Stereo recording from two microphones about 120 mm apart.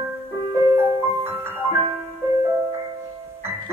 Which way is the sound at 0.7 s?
20° right (ahead or behind).